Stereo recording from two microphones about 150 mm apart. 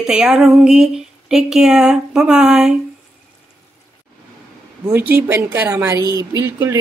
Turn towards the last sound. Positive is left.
turn(degrees=-20)  # may be behind; listen again after turning